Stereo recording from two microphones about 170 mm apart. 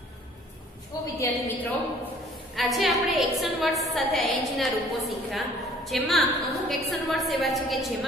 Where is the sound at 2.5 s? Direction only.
Centre (ahead or behind).